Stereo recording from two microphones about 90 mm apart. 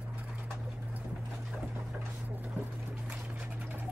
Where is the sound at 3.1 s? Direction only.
15° right (ahead or behind).